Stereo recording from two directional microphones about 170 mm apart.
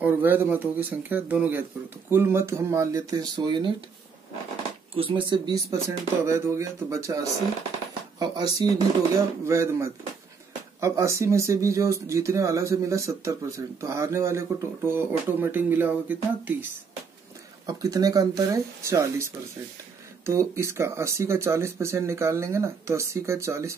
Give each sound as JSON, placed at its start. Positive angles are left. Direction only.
{"t": 0.0, "sound": "speech", "side_deg": -10}
{"t": 4.9, "sound": "speech", "side_deg": -30}
{"t": 17.6, "sound": "speech", "side_deg": -20}